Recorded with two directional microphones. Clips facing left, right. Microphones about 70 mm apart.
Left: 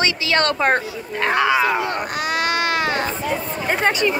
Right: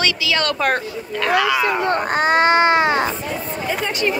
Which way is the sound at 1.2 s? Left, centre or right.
Left.